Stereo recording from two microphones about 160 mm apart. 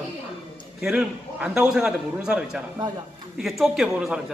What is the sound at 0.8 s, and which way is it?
A man's voice, 5° right (ahead or behind).